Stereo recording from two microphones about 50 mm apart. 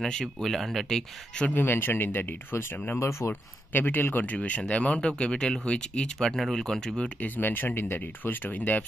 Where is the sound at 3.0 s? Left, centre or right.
Left.